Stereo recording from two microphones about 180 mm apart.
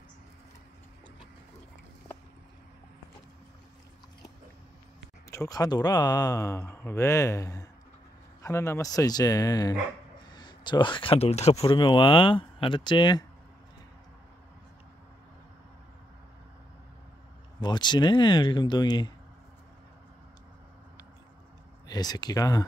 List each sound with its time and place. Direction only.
5.3 s speech: 20° left (ahead or behind); by 11.6 s 35° left (ahead or behind)
11.6 s speech: 25° left (ahead or behind)
17.6 s speech: 25° left (ahead or behind)
21.8 s speech: 20° left (ahead or behind)